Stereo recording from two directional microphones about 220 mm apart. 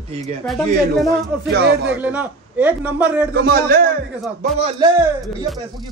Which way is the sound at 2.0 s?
5° right (ahead or behind).